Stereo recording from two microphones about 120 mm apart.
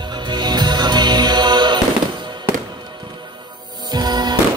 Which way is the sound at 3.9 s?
35° right (ahead or behind).